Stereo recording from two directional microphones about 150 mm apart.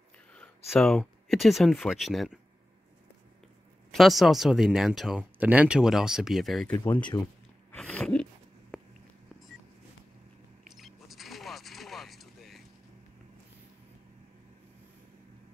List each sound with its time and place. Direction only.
0.7 s speech: 5° left (ahead or behind)
3.9 s speech: centre (ahead or behind)
7.1 s speech: 25° left (ahead or behind)
7.7 s a sound: 5° left (ahead or behind)
8.7 s walk: 5° right (ahead or behind)
10.7 s a sound: centre (ahead or behind)